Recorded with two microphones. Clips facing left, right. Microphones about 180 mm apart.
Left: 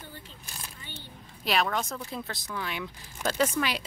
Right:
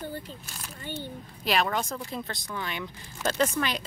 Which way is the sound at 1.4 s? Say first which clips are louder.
Right 1 dB; centre (ahead or behind).